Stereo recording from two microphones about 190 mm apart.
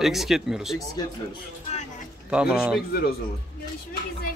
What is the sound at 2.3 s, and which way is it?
Speech, 5° right (ahead or behind).